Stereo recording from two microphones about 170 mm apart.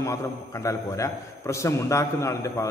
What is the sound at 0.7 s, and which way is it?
A man's voice, 15° left (ahead or behind).